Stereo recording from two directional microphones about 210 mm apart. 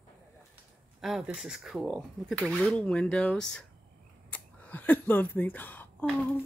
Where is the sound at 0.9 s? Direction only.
Centre (ahead or behind).